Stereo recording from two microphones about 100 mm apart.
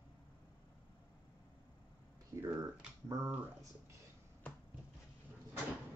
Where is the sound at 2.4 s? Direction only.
35° right (ahead or behind).